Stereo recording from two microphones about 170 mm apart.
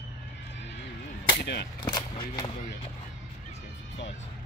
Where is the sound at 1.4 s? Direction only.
75° left (ahead or behind).